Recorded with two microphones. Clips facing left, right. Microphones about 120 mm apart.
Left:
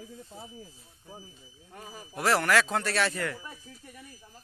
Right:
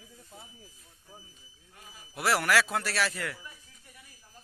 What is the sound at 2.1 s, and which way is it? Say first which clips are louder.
A man's voice: left 2 dB; 10° right (ahead or behind).